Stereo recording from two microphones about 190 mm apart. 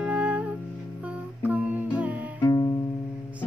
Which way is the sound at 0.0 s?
5° right (ahead or behind).